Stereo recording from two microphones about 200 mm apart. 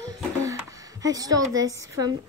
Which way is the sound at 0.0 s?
15° right (ahead or behind).